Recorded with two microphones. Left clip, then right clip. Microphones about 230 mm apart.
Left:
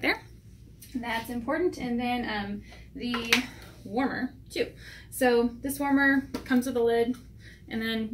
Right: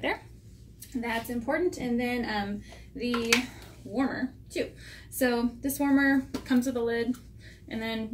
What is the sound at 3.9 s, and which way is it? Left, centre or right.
A woman's voice, centre.